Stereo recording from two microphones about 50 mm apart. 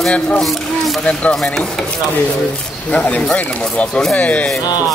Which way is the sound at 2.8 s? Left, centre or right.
Left.